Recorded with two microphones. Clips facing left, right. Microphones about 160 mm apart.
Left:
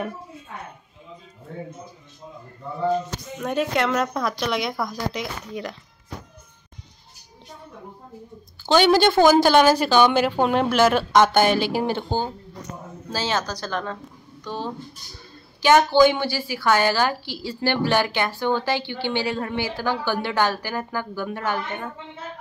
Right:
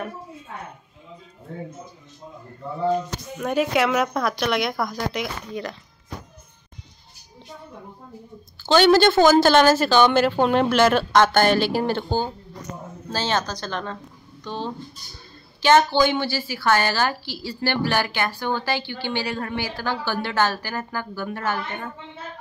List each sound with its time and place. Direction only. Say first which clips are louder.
3.3 s a woman's voice: right 2 dB; 5° right (ahead or behind)
8.6 s a woman's voice: right 1 dB; 15° left (ahead or behind)
15.6 s a woman's voice: left 2 dB; 10° left (ahead or behind)